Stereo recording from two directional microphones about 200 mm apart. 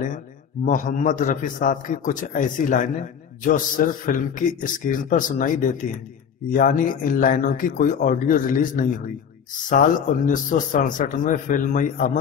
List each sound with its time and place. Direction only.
0.7 s a man's voice: 40° left (ahead or behind)